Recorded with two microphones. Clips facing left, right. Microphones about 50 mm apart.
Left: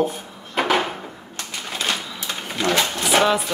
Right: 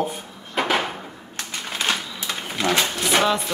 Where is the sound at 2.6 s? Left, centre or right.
Centre.